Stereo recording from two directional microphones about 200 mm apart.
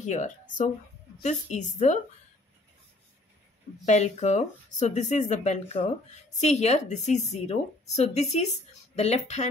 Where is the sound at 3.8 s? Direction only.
35° left (ahead or behind).